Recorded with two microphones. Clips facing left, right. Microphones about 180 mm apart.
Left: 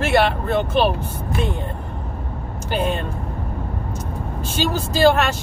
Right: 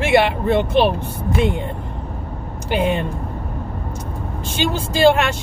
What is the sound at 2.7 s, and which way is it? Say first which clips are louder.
Speech: right 3 dB; 15° right (ahead or behind).